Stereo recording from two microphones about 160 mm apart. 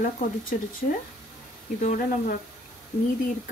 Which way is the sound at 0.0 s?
60° left (ahead or behind).